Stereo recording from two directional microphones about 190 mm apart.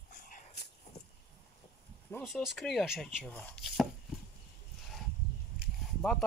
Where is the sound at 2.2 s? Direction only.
Centre (ahead or behind).